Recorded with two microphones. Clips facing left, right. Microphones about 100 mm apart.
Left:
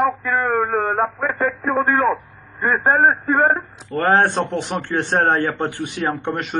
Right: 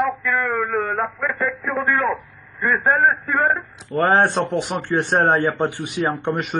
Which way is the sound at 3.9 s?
5° right (ahead or behind).